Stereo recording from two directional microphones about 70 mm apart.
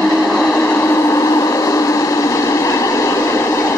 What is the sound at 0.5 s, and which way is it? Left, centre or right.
Vehicle, left.